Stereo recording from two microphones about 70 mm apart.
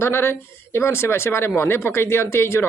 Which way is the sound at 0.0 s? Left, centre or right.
Left.